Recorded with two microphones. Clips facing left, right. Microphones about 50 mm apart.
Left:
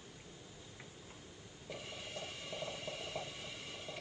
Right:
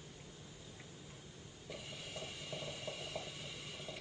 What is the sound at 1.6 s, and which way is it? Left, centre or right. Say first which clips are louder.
Mechanisms: left 2 dB; centre.